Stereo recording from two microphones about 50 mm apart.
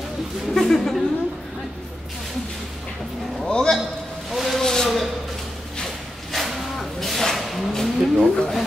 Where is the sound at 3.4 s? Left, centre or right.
Centre.